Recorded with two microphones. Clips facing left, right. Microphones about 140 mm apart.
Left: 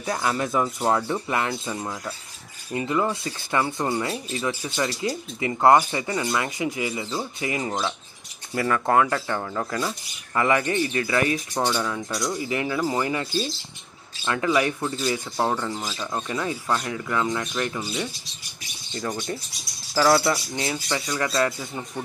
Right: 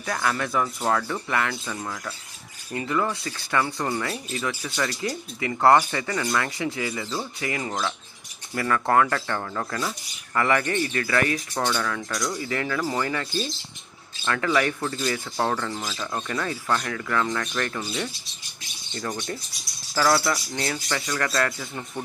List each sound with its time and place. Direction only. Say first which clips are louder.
0.0 s speech: left 1 dB; 25° left (ahead or behind)
18.9 s speech: left 2 dB; 20° left (ahead or behind)